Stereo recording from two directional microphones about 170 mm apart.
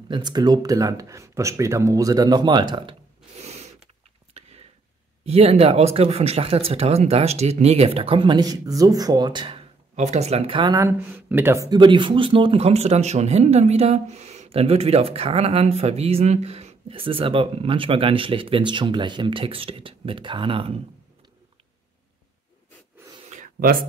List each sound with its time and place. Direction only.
0.1 s speech: 25° right (ahead or behind)
3.3 s zipper: 40° right (ahead or behind)
4.3 s a sound: 40° right (ahead or behind)
5.2 s speech: 35° right (ahead or behind)
9.9 s speech: 40° right (ahead or behind)
10.8 s speech: 10° right (ahead or behind); by 20.7 s 30° right (ahead or behind)
23.3 s a sound: 55° right (ahead or behind)